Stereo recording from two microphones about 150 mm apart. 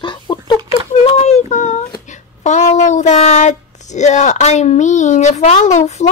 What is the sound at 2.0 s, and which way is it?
Speech, 55° left (ahead or behind).